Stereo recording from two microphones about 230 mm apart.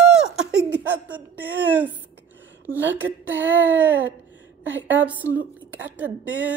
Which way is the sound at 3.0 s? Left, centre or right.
Centre.